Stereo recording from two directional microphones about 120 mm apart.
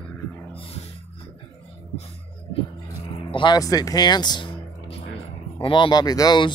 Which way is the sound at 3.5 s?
30° left (ahead or behind).